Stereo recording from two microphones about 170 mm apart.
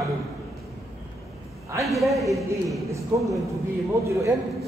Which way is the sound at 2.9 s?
20° right (ahead or behind).